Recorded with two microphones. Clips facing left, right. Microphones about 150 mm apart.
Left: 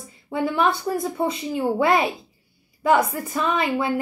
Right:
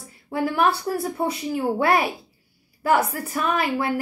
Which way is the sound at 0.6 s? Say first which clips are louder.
Even; 10° right (ahead or behind).